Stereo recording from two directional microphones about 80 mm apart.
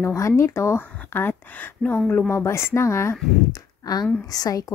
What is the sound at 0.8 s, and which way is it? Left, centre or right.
Speech, left.